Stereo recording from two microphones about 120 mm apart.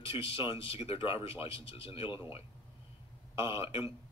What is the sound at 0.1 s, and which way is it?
Speech, 50° left (ahead or behind).